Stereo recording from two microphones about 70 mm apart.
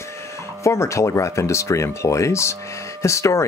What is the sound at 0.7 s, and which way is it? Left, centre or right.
Speech, left.